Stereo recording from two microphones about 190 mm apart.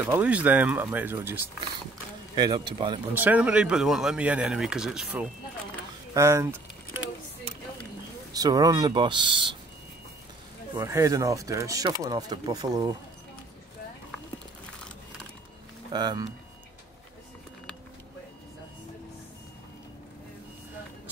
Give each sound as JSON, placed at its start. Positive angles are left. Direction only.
{"t": 0.0, "sound": "speech", "side_deg": -10}
{"t": 2.3, "sound": "speech", "side_deg": -20}
{"t": 3.2, "sound": "speech", "side_deg": -10}
{"t": 6.1, "sound": "speech", "side_deg": -15}
{"t": 8.3, "sound": "speech", "side_deg": -20}
{"t": 10.8, "sound": "speech", "side_deg": -15}
{"t": 15.9, "sound": "speech", "side_deg": -20}